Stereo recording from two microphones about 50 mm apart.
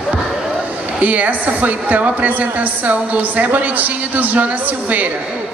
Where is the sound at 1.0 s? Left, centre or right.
Right.